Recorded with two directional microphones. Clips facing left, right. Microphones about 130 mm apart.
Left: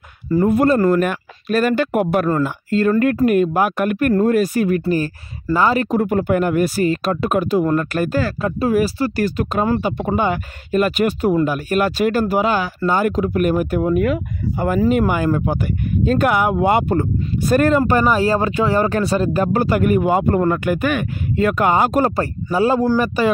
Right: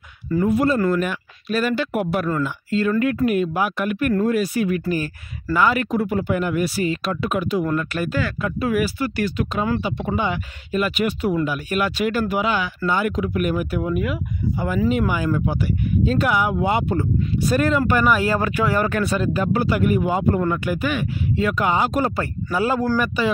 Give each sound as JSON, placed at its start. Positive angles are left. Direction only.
{"t": 0.3, "sound": "speech", "side_deg": 45}
{"t": 23.2, "sound": "speech", "side_deg": 45}